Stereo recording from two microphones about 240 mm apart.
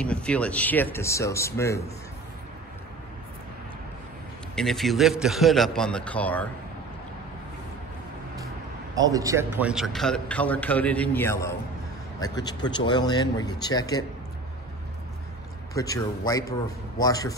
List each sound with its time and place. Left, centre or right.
0.0 s speech: centre
4.6 s a man's voice: centre
9.1 s a man's voice: centre
15.7 s speech: centre